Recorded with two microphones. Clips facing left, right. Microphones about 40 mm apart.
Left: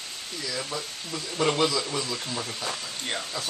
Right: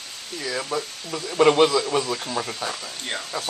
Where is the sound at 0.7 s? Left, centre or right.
Right.